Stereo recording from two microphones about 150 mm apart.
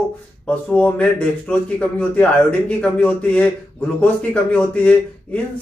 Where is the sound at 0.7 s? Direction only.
10° left (ahead or behind).